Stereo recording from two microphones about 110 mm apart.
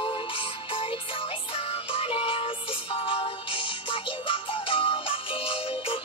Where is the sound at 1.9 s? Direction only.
55° left (ahead or behind).